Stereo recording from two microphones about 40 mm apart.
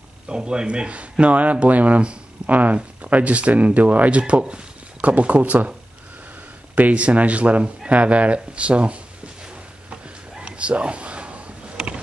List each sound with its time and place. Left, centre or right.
0.3 s speech: right
4.2 s speech: right
6.7 s speech: right
10.6 s a sound: right